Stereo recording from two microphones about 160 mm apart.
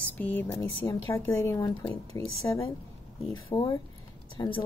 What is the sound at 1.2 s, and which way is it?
Speech, 15° left (ahead or behind).